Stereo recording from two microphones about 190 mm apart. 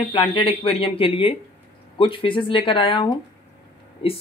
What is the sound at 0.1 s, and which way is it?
Speech, 30° left (ahead or behind).